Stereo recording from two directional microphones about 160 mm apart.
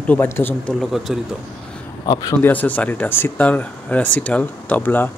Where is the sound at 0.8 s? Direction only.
Centre (ahead or behind).